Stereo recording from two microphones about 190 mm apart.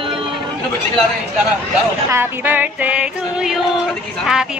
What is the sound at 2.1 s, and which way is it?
Music, 10° right (ahead or behind).